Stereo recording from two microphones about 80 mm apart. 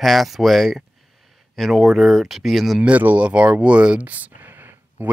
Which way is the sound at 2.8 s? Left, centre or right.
Centre.